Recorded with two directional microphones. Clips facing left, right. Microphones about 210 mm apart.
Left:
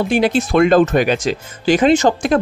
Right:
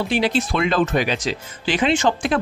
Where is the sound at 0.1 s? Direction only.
50° left (ahead or behind).